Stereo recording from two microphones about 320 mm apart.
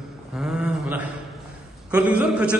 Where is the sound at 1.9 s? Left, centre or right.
Centre.